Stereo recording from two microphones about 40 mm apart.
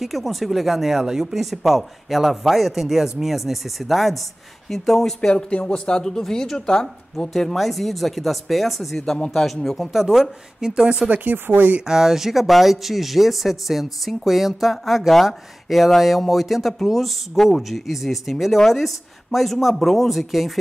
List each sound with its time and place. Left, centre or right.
0.0 s speech: centre
5.3 s speech: left
7.3 s speech: centre
9.0 s speech: centre
9.8 s speech: centre
10.7 s speech: right
11.3 s speech: right
11.9 s speech: centre